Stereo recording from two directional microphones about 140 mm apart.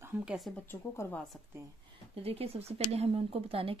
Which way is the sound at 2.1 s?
45° right (ahead or behind).